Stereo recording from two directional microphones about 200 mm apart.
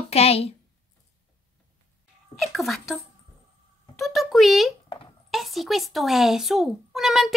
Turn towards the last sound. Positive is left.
turn(degrees=0)  # may be behind; listen again after turning